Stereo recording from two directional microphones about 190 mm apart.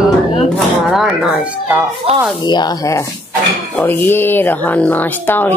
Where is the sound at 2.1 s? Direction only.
30° right (ahead or behind).